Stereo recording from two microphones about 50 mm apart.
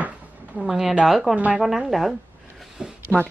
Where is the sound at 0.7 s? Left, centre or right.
Centre.